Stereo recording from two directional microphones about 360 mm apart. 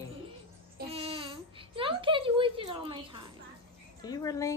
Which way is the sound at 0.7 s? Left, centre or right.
Centre.